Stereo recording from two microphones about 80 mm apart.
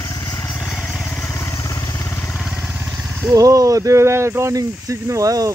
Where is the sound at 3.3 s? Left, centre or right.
Right.